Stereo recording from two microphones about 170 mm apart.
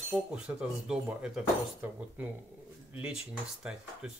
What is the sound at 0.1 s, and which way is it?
Speech, 5° right (ahead or behind).